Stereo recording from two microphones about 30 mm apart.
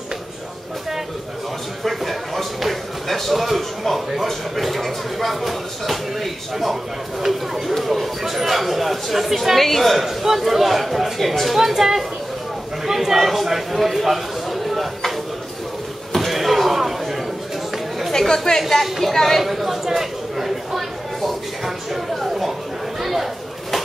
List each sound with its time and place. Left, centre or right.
1.8 s speech: centre
10.0 s a man's voice: centre
11.5 s a man's voice: centre
16.2 s slam: centre
18.1 s a woman's voice: centre
18.7 s a woman's voice: centre
19.4 s a sound: centre